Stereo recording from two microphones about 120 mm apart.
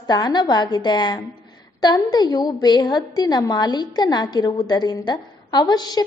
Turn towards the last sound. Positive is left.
turn(degrees=35)  # may be behind; listen again after turning